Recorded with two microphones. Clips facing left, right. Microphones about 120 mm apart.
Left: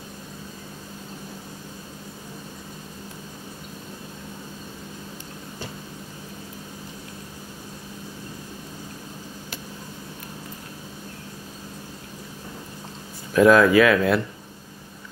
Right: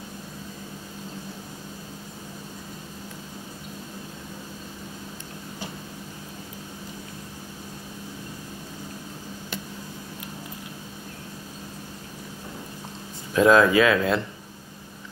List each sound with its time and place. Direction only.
13.3 s speech: 25° right (ahead or behind)